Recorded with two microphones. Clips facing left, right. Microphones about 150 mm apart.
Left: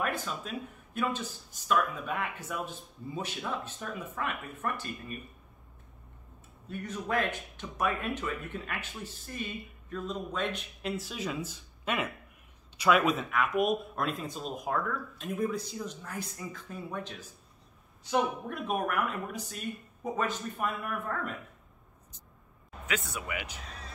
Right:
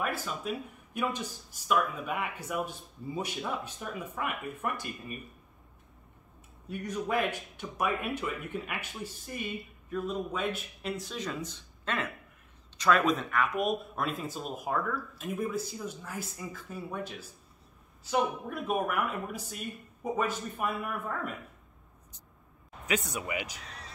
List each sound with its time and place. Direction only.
0.0 s speech: 5° right (ahead or behind)
6.7 s speech: 10° right (ahead or behind)
18.1 s speech: 5° right (ahead or behind)
22.8 s speech: 40° right (ahead or behind)
23.1 s speech: 25° right (ahead or behind)